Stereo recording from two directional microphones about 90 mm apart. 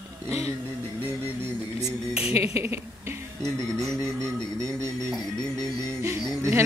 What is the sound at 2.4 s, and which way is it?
Speech, 30° right (ahead or behind).